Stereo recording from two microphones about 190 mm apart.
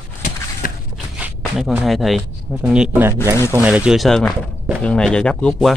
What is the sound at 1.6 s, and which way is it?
Speech, 5° right (ahead or behind).